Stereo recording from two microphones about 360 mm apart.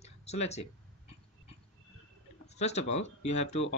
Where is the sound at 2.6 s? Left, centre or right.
Centre.